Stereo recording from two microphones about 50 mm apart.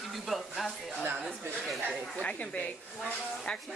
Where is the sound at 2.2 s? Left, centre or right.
Left.